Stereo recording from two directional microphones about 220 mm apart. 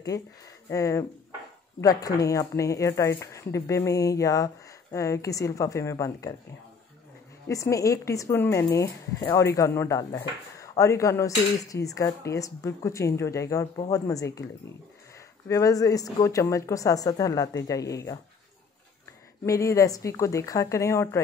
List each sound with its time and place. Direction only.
0.1 s speech: 15° left (ahead or behind)
7.4 s speech: 15° left (ahead or behind)
19.4 s speech: 15° left (ahead or behind)